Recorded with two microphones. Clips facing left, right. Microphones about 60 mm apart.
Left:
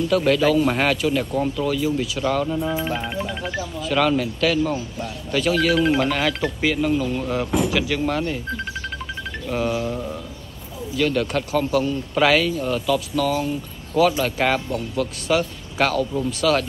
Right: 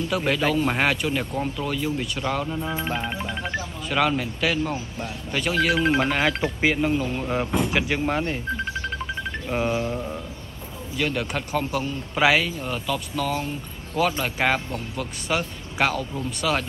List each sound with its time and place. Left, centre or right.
0.1 s a man's voice: centre
9.5 s a man's voice: centre
11.0 s a man's voice: centre